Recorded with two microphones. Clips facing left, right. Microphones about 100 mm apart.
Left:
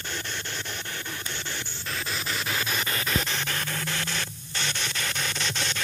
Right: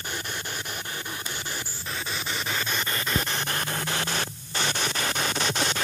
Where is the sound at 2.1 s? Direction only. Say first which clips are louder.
Even; centre (ahead or behind).